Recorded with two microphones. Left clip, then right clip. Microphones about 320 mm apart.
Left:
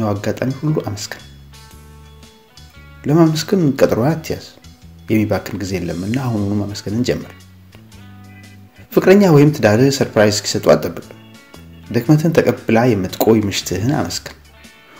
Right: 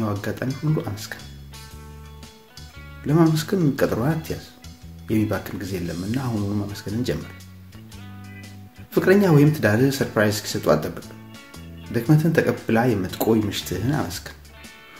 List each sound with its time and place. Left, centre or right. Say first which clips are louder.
0.0 s speech: left 7 dB; centre
3.0 s speech: left 6 dB; centre
8.9 s speech: left 7 dB; centre
11.9 s speech: left 6 dB; centre